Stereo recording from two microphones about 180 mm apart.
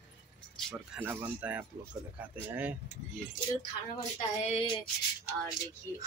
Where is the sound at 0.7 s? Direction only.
10° right (ahead or behind).